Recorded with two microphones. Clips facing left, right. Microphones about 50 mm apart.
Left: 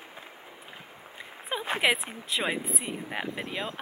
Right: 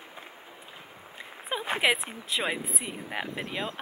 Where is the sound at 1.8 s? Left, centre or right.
Centre.